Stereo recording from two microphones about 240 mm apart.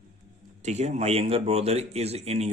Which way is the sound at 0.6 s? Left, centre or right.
Right.